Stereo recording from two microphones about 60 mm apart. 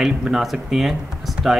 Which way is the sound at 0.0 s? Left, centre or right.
Centre.